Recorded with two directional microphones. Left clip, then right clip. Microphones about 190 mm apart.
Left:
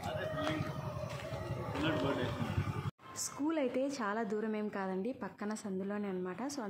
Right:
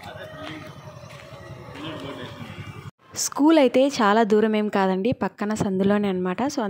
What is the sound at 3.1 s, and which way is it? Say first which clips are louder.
A woman's voice: right 19 dB; 50° right (ahead or behind).